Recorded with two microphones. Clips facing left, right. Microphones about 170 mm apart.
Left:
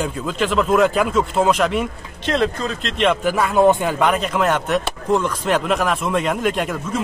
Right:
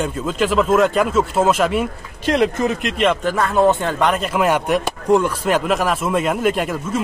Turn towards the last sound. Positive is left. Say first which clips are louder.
# right 1 dB
turn(degrees=-5)  # may be behind; listen again after turning